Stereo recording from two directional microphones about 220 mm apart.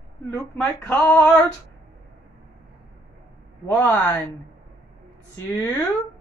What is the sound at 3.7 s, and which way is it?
Speech, 10° left (ahead or behind).